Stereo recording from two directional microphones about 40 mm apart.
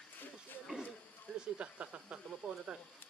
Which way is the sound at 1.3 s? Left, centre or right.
Right.